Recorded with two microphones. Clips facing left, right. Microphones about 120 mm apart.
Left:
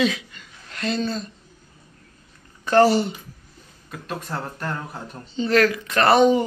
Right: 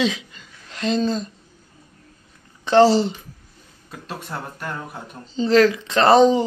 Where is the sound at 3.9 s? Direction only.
20° right (ahead or behind).